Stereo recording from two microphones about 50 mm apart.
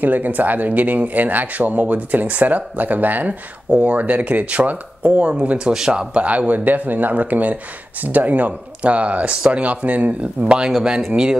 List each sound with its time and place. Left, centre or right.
0.0 s speech: right
5.3 s speech: right